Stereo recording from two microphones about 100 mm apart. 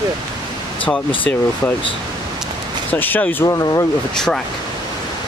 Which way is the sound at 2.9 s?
15° left (ahead or behind).